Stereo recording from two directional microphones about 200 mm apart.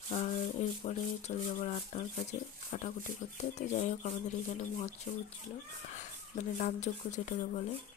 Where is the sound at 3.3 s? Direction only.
35° left (ahead or behind).